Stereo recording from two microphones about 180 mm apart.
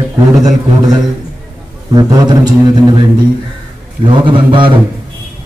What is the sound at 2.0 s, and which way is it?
Speech, 25° right (ahead or behind).